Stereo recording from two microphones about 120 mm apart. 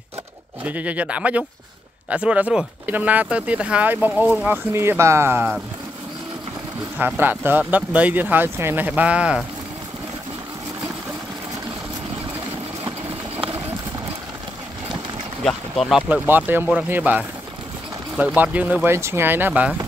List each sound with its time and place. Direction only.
0.7 s speech: 10° right (ahead or behind)
7.0 s speech: 15° right (ahead or behind)
15.4 s speech: centre (ahead or behind)
16.1 s speech: 15° right (ahead or behind)